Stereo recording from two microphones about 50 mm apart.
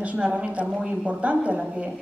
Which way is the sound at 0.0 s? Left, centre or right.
Right.